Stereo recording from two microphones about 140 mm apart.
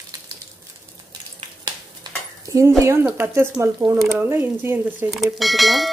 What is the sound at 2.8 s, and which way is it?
Speech, 15° right (ahead or behind).